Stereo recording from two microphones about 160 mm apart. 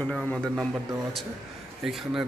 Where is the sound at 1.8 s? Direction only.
Centre (ahead or behind).